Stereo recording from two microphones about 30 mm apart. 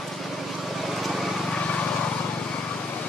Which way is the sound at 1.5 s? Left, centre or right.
Left.